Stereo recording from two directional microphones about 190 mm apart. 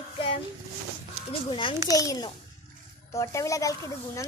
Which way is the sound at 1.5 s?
25° left (ahead or behind).